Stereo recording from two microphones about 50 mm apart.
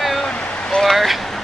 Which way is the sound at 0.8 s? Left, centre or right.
Centre.